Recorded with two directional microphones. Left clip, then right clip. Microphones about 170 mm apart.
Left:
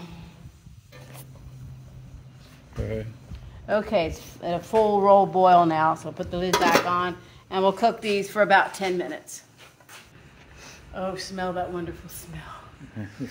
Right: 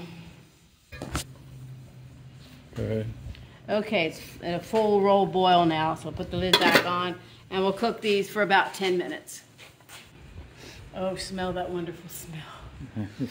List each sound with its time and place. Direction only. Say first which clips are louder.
2.8 s speech: right 1 dB; 40° right (ahead or behind)
3.6 s a woman's voice: left 3 dB; 15° left (ahead or behind)
10.6 s speech: even; 10° left (ahead or behind)